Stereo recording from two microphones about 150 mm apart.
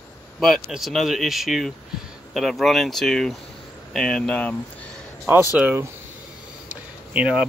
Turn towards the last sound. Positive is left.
turn(degrees=-10)  # may be behind; listen again after turning